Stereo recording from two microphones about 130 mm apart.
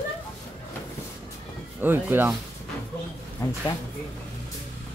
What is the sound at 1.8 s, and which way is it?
Speech, 15° right (ahead or behind).